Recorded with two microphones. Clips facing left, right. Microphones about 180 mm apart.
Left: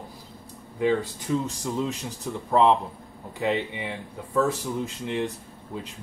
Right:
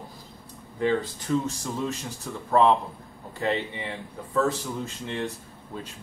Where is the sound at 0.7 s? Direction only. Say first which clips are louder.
Left 1 dB; 10° left (ahead or behind).